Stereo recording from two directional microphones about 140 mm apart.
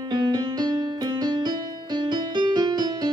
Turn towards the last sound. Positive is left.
turn(degrees=-30)  # may be behind; listen again after turning